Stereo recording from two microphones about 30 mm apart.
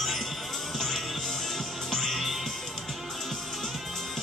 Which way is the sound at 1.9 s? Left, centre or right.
Centre.